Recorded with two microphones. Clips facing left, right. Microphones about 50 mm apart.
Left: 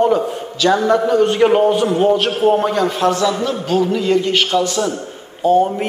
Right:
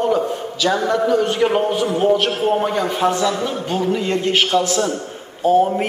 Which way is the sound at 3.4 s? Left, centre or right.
Right.